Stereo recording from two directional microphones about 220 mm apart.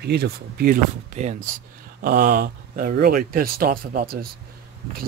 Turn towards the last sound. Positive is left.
turn(degrees=-40)  # may be behind; listen again after turning